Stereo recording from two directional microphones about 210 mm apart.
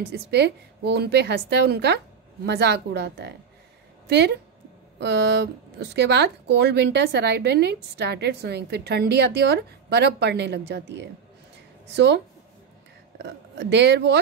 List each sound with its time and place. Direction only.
0.1 s speech: 55° right (ahead or behind)
13.2 s speech: 55° right (ahead or behind)